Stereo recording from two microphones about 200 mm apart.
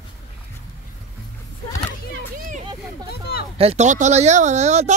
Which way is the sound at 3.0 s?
50° left (ahead or behind).